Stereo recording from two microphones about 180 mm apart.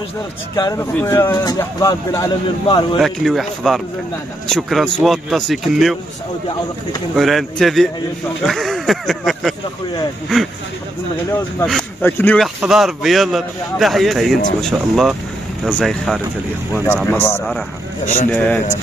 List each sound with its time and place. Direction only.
0.6 s speech: 20° left (ahead or behind)
3.0 s a man's voice: centre (ahead or behind)
7.2 s a man's voice: centre (ahead or behind)
11.6 s a man's voice: 5° left (ahead or behind)
12.6 s a man's voice: centre (ahead or behind)